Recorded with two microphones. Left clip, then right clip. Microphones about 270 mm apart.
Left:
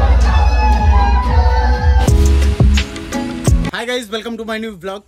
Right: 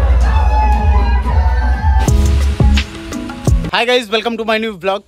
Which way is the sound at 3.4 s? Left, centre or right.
Centre.